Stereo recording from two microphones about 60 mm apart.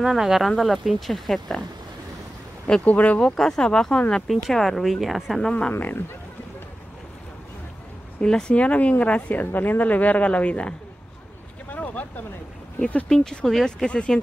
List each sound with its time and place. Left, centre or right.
0.0 s speech: centre
2.8 s a woman's voice: left
3.2 s speech: centre
5.7 s speech: left
8.2 s a woman's voice: centre
11.7 s boat: left
12.8 s speech: centre